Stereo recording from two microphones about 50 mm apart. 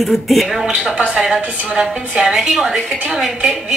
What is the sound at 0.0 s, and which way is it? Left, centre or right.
Speech, centre.